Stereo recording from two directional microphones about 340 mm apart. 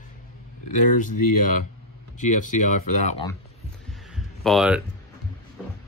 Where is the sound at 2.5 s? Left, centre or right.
Left.